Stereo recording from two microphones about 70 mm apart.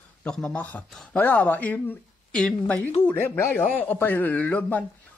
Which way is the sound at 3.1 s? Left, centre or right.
Left.